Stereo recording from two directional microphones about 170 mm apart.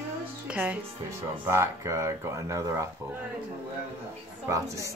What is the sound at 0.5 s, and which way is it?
Speech, 10° right (ahead or behind).